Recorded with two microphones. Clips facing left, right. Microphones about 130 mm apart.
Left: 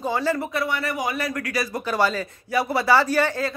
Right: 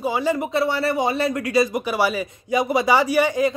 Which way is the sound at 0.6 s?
30° right (ahead or behind).